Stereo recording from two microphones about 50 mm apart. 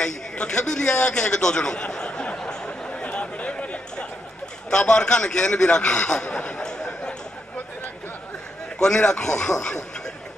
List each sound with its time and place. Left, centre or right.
0.0 s a sound: centre
4.6 s a man's voice: centre
8.7 s a man's voice: centre